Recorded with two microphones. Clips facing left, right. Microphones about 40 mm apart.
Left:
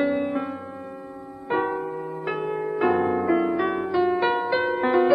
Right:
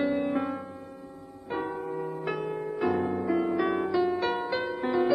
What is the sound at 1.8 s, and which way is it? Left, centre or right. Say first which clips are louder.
Music: left 3 dB; centre.